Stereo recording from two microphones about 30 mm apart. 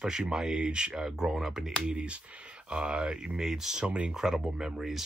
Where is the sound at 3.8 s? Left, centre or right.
Right.